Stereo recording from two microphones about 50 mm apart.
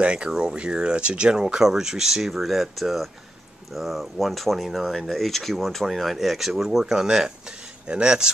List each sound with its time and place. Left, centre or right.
0.0 s speech: right